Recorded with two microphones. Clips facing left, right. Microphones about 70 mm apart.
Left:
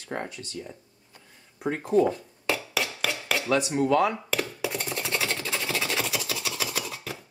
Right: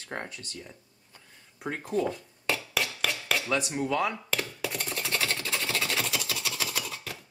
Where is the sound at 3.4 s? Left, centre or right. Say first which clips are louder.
Left 8 dB; centre.